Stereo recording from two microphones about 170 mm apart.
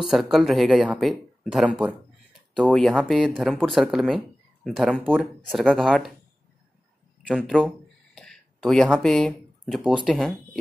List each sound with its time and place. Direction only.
0.0 s speech: centre (ahead or behind)
7.3 s a sound: centre (ahead or behind)
9.8 s speech: 5° right (ahead or behind)